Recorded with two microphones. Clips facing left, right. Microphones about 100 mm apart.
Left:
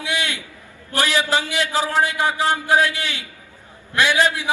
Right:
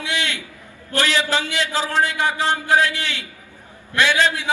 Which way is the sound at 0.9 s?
15° left (ahead or behind).